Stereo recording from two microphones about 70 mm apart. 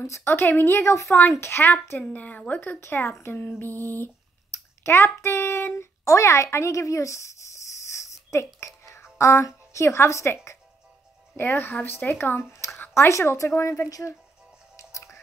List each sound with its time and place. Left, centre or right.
0.0 s speech: left
4.8 s a woman's voice: left
11.3 s speech: left
14.8 s music: left